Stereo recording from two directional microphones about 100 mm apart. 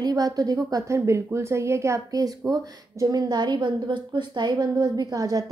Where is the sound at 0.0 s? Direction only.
40° right (ahead or behind).